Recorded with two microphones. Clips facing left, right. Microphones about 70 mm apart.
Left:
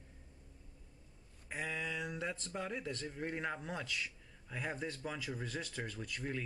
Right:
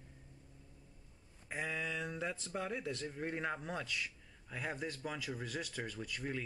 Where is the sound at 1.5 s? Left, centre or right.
Centre.